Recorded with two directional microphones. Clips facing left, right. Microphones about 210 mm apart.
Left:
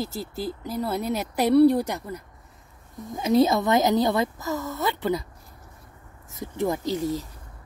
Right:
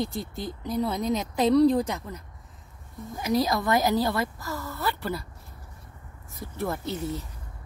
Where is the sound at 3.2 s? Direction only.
25° left (ahead or behind).